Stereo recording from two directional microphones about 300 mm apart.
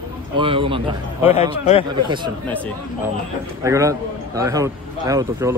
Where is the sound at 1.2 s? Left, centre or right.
Left.